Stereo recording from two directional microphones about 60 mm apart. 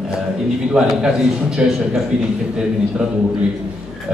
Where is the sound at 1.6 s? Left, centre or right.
Centre.